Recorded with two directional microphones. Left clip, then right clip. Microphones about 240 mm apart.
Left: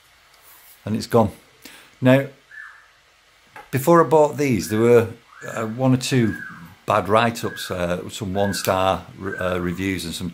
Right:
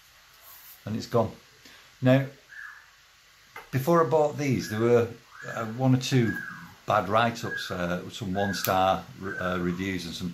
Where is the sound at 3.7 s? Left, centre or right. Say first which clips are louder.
Left 8 dB; left.